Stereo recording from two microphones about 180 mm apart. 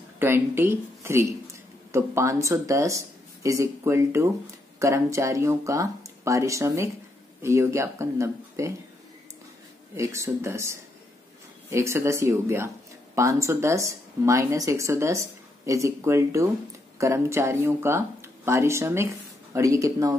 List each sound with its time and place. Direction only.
0.2 s speech: 10° right (ahead or behind)
9.9 s speech: 15° right (ahead or behind)